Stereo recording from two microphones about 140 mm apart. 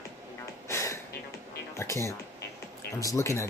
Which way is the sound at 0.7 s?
20° left (ahead or behind).